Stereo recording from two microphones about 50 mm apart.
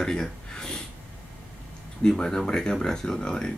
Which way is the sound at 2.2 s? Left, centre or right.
Centre.